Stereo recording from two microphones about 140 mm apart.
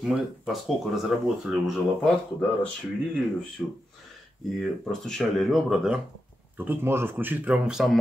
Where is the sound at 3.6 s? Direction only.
15° left (ahead or behind).